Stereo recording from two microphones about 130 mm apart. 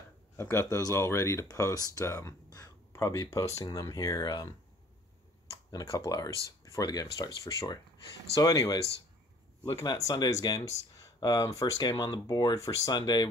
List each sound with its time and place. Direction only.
0.4 s speech: 20° left (ahead or behind)
5.7 s speech: 25° left (ahead or behind)
9.8 s speech: 25° left (ahead or behind)